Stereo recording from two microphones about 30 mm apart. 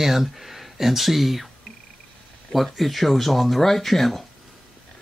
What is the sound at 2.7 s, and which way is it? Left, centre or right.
Speech, centre.